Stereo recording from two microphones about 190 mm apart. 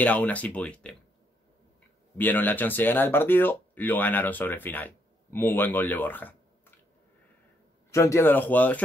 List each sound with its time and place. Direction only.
0.0 s speech: 10° left (ahead or behind)
2.1 s speech: 10° left (ahead or behind)
7.9 s speech: 15° left (ahead or behind)